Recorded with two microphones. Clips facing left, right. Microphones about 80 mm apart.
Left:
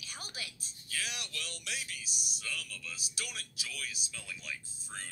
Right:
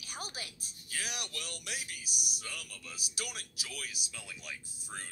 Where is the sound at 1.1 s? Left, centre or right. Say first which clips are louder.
Right 1 dB; right.